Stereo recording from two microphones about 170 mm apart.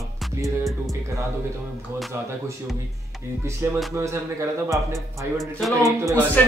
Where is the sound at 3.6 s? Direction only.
15° right (ahead or behind).